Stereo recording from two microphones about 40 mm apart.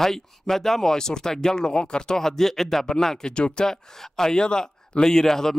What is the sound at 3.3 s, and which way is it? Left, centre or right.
Speech, left.